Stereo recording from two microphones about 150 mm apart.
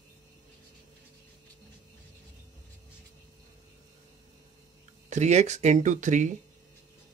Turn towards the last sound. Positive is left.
turn(degrees=-55)  # may be behind; listen again after turning